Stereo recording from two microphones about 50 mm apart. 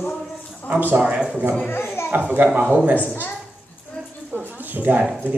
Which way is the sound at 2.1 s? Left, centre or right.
Right.